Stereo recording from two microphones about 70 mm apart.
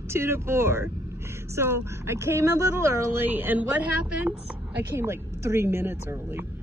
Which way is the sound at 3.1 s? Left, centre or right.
Right.